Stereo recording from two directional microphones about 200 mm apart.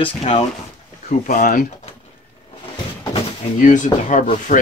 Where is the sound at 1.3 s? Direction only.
40° left (ahead or behind).